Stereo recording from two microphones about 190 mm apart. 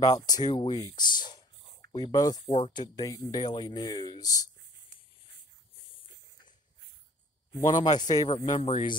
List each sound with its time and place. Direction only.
0.0 s speech: 20° left (ahead or behind)
7.6 s speech: 20° left (ahead or behind)